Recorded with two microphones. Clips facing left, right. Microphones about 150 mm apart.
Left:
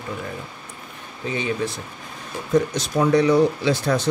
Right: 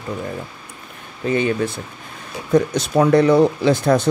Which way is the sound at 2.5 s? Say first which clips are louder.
Right 4 dB; 60° right (ahead or behind).